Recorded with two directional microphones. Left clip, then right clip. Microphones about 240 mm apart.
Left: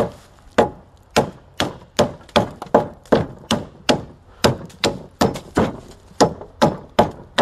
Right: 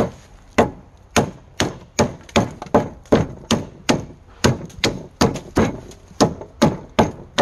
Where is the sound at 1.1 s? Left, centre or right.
Centre.